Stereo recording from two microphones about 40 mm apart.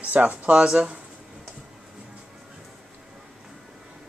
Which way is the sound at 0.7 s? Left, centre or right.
Right.